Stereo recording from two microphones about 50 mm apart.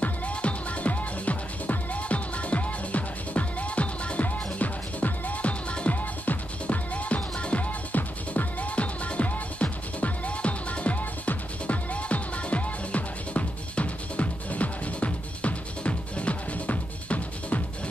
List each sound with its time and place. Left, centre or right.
0.0 s music: left